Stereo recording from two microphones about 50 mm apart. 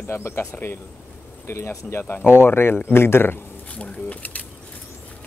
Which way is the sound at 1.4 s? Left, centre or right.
Left.